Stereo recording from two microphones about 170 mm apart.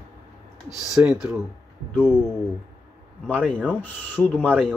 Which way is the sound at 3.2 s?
5° left (ahead or behind).